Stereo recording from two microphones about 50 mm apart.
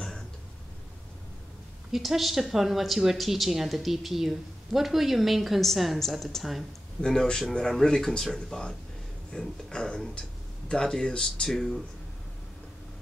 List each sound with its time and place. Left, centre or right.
1.9 s speech: centre
7.2 s speech: centre